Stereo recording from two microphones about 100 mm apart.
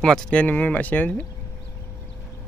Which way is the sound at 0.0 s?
10° left (ahead or behind).